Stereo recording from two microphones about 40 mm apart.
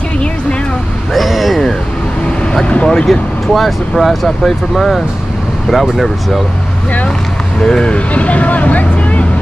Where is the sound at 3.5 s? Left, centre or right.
Centre.